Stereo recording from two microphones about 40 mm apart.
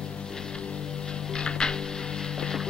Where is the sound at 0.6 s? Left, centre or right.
Left.